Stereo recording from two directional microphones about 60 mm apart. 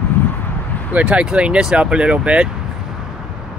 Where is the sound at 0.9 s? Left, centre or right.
Centre.